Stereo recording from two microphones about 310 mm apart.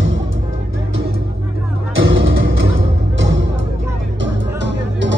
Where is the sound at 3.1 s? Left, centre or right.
Right.